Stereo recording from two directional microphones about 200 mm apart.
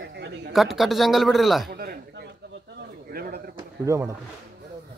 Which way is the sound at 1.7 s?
50° right (ahead or behind).